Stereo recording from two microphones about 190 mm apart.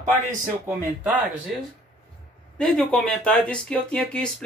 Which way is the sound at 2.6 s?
5° left (ahead or behind).